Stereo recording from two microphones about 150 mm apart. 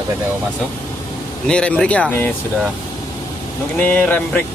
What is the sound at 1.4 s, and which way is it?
Speech, 5° left (ahead or behind).